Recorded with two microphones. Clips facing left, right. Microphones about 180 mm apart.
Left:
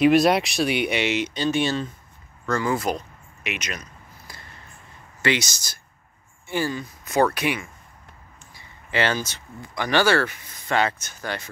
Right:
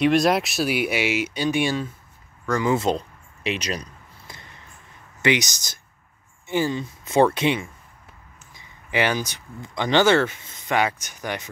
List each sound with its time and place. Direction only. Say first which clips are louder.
0.0 s speech: left 2 dB; centre (ahead or behind); by 3.9 s 35° right (ahead or behind)
4.3 s a sound: right 2 dB; 20° right (ahead or behind)
5.2 s speech: right 2 dB; 15° right (ahead or behind)